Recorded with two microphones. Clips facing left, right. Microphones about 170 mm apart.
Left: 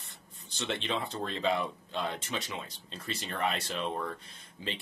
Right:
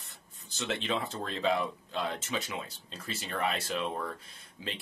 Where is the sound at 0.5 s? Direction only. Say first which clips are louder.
Right 1 dB; centre (ahead or behind).